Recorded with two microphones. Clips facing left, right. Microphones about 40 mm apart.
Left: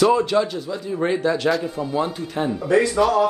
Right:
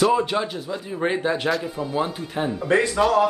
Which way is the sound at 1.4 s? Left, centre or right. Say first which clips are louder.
Left 3 dB; centre.